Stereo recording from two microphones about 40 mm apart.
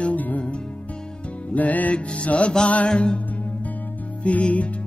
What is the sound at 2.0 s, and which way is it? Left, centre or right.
Music, left.